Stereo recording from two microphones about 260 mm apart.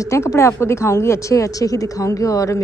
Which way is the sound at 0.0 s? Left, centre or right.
Centre.